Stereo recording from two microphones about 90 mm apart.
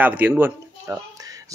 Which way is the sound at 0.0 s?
20° right (ahead or behind).